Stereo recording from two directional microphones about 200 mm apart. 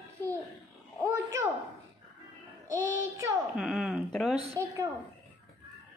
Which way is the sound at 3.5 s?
5° right (ahead or behind).